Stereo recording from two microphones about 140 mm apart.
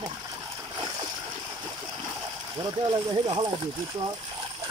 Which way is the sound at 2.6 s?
35° right (ahead or behind).